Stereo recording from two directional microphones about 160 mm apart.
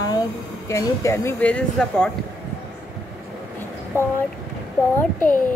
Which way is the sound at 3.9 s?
15° right (ahead or behind).